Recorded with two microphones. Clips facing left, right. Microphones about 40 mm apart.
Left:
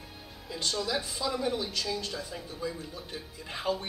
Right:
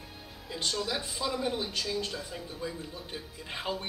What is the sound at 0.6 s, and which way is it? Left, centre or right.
A man's voice, centre.